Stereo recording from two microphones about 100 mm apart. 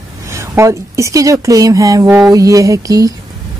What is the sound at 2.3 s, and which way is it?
Speech, 35° right (ahead or behind).